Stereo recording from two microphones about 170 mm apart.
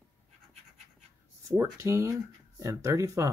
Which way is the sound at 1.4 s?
15° right (ahead or behind).